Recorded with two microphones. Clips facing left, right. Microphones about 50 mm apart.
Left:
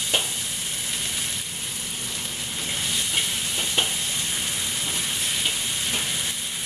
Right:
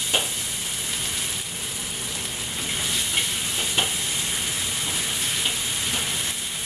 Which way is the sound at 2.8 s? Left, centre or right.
Centre.